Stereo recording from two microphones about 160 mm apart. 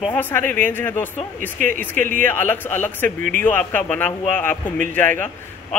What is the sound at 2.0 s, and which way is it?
Speech, 55° right (ahead or behind).